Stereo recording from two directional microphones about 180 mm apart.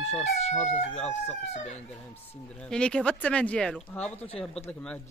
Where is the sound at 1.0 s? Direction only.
5° left (ahead or behind).